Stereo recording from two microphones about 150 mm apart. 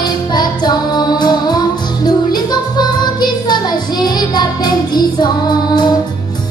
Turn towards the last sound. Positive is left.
turn(degrees=30)  # may be behind; listen again after turning